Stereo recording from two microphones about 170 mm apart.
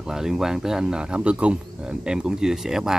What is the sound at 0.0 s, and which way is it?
Speech, 5° right (ahead or behind).